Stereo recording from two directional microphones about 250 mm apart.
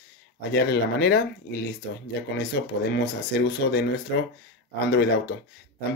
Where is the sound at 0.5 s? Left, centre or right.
Left.